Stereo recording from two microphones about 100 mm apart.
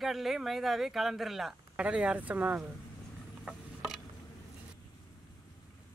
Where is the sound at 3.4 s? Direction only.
Centre (ahead or behind).